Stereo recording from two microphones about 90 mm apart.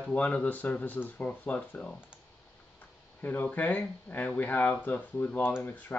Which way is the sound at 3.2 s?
20° left (ahead or behind).